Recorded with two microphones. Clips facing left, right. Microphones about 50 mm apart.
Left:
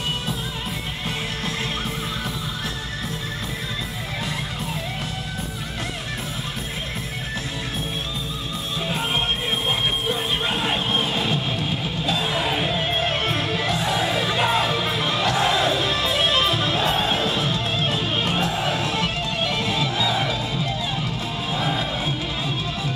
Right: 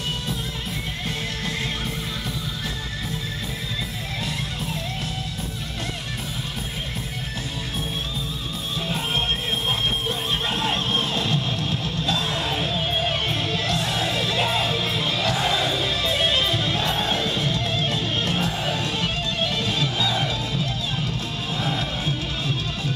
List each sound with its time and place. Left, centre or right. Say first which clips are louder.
8.8 s music: left 1 dB; centre